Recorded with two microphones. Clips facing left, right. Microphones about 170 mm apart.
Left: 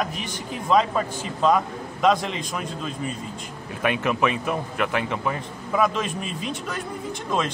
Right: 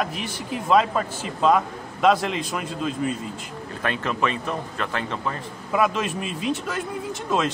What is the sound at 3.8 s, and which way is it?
A man's voice, 15° left (ahead or behind).